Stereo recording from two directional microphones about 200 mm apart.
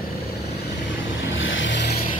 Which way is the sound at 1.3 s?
75° left (ahead or behind).